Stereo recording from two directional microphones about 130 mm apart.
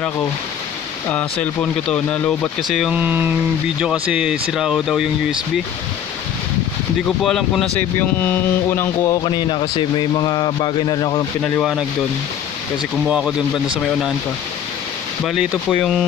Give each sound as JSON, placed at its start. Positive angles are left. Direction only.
{"t": 1.0, "sound": "speech", "side_deg": 10}
{"t": 2.9, "sound": "speech", "side_deg": -15}
{"t": 7.1, "sound": "speech", "side_deg": 5}
{"t": 8.0, "sound": "speech", "side_deg": 15}
{"t": 9.2, "sound": "a man's voice", "side_deg": 35}
{"t": 13.0, "sound": "speech", "side_deg": -10}
{"t": 15.2, "sound": "speech", "side_deg": 5}